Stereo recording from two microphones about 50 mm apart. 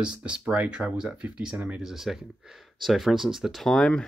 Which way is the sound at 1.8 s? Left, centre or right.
Centre.